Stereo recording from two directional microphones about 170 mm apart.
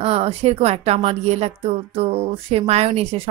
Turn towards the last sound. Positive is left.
turn(degrees=-35)  # may be behind; listen again after turning